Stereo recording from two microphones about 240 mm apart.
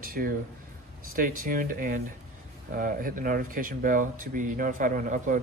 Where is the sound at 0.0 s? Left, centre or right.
Right.